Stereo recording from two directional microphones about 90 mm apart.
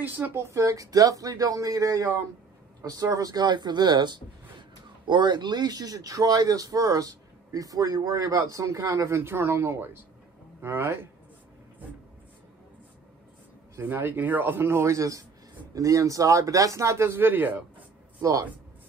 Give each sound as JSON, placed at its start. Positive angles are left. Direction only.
{"t": 0.0, "sound": "a man's voice", "side_deg": -20}
{"t": 13.7, "sound": "a man's voice", "side_deg": -25}